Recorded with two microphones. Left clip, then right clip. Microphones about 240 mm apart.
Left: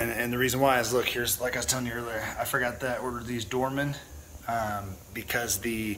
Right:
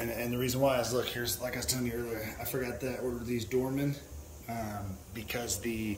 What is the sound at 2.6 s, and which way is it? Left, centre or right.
Speech, left.